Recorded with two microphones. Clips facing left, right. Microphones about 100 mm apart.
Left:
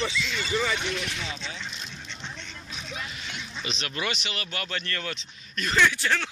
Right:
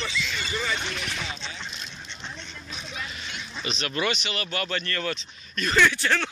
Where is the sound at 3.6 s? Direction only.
15° left (ahead or behind).